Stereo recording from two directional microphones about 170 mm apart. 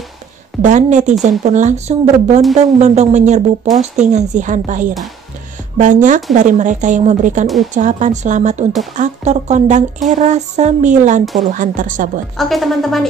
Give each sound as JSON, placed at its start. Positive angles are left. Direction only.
{"t": 0.6, "sound": "speech", "side_deg": -45}
{"t": 7.4, "sound": "speech", "side_deg": 0}
{"t": 7.7, "sound": "speech", "side_deg": -45}
{"t": 12.4, "sound": "speech", "side_deg": 0}